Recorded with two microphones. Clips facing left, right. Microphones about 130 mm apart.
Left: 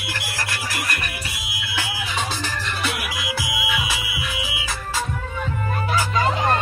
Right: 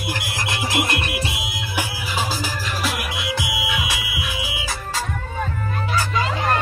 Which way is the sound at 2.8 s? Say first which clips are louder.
Right 2 dB; centre (ahead or behind).